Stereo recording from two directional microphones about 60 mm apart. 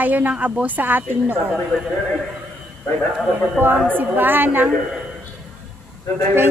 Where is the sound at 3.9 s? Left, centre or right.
Right.